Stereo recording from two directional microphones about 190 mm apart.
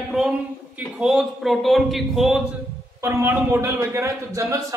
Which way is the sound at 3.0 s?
15° right (ahead or behind).